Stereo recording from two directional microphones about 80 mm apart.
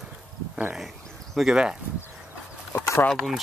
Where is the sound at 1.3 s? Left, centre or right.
Centre.